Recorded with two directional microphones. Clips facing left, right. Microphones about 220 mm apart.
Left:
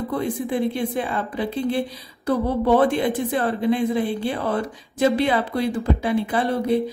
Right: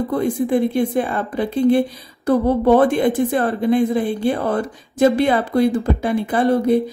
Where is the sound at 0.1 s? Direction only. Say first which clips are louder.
Right 6 dB; 50° right (ahead or behind).